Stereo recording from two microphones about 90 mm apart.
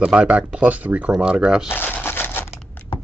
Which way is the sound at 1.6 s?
25° left (ahead or behind).